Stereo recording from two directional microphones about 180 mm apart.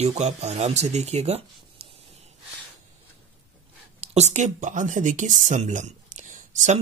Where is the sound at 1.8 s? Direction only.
35° right (ahead or behind).